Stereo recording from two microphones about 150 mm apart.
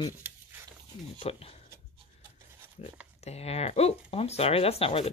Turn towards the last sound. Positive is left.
turn(degrees=40)  # may be behind; listen again after turning